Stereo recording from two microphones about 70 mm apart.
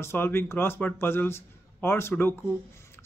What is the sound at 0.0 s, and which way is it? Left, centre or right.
A man's voice, left.